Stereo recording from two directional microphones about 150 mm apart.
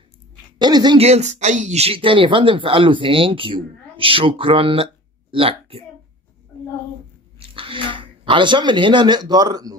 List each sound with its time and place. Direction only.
0.6 s speech: 30° right (ahead or behind)
0.9 s speech: 45° right (ahead or behind)
7.3 s speech: 35° right (ahead or behind)